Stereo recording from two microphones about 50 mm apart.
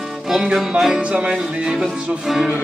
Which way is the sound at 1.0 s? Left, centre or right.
Centre.